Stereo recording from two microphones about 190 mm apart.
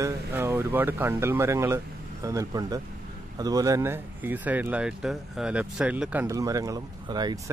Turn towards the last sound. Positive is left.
turn(degrees=-20)  # may be behind; listen again after turning